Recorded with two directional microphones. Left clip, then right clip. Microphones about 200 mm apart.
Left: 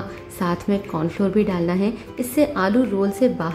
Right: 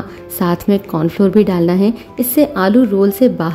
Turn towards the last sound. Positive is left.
turn(degrees=-40)  # may be behind; listen again after turning